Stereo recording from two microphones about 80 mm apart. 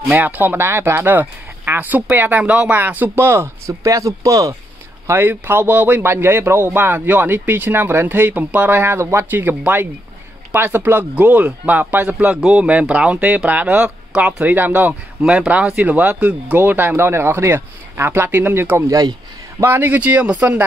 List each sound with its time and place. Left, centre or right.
0.2 s speech: right
5.0 s speech: right
18.9 s speech: right
19.6 s speech: right